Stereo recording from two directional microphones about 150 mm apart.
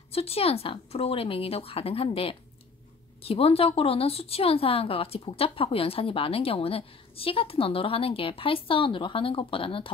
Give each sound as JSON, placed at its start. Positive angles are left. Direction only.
{"t": 0.1, "sound": "speech", "side_deg": 40}